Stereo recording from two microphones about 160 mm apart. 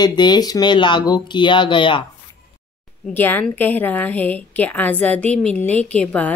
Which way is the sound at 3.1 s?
10° left (ahead or behind).